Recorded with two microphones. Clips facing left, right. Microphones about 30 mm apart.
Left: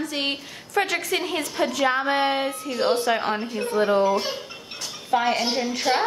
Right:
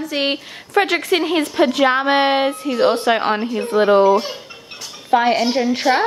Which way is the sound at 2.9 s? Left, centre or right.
Right.